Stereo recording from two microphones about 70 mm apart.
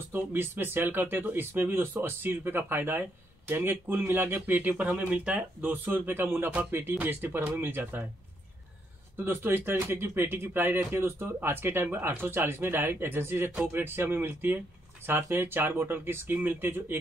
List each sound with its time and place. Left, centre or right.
0.1 s speech: right
9.1 s speech: right